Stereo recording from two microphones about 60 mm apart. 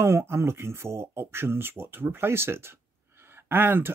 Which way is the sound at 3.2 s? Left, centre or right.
Right.